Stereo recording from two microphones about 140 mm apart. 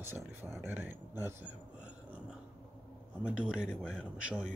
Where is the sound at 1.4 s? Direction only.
10° right (ahead or behind).